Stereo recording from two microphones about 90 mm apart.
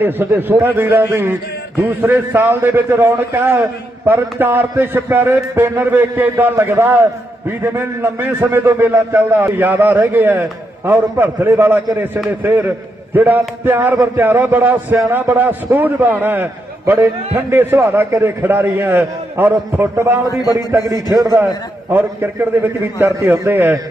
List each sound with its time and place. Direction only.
0.0 s a man's voice: 25° right (ahead or behind)
20.8 s a man's voice: 40° right (ahead or behind)
21.9 s a man's voice: 25° right (ahead or behind)